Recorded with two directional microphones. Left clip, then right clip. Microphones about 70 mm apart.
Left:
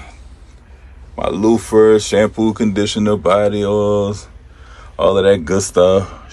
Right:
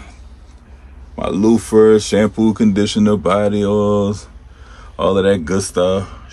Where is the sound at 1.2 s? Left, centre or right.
Right.